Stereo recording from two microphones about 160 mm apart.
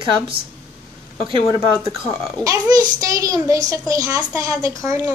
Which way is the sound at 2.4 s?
25° right (ahead or behind).